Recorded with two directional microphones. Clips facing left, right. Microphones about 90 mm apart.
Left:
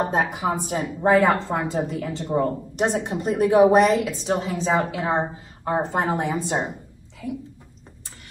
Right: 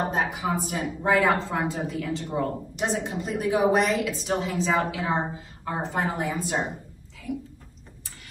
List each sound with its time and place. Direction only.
0.1 s a woman's voice: 40° left (ahead or behind)